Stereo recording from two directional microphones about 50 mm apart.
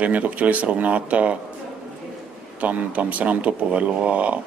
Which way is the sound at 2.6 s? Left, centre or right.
Right.